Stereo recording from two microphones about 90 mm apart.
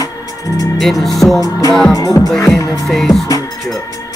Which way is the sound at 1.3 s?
40° left (ahead or behind).